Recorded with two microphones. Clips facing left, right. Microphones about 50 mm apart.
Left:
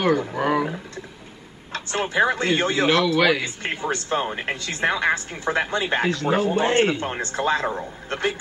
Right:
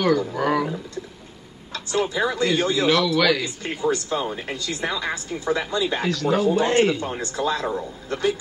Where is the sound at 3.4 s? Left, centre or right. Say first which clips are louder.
Right 2 dB; left.